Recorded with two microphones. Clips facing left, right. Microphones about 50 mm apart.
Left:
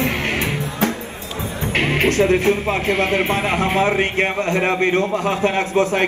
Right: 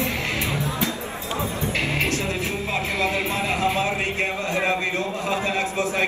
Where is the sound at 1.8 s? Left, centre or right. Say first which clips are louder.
Left 10 dB; left.